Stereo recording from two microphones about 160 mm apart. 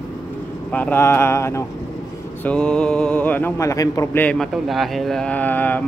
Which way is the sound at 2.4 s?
5° left (ahead or behind).